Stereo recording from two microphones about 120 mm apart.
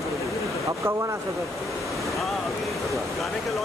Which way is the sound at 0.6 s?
25° right (ahead or behind).